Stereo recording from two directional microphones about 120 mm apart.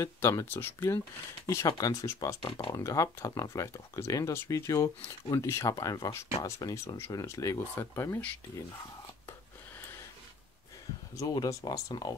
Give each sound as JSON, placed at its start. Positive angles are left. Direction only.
{"t": 0.0, "sound": "speech", "side_deg": 25}
{"t": 1.7, "sound": "speech", "side_deg": 30}
{"t": 2.4, "sound": "speech", "side_deg": 40}
{"t": 11.1, "sound": "speech", "side_deg": 30}